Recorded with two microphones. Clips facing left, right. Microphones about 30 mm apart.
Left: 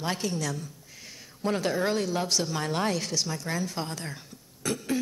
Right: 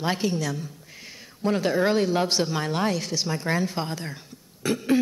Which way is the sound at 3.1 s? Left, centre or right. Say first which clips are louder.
Right 3 dB; centre.